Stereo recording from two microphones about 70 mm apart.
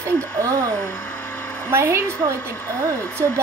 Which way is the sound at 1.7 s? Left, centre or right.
Right.